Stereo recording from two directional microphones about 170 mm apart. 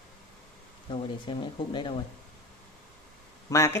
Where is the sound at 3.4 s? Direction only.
15° left (ahead or behind).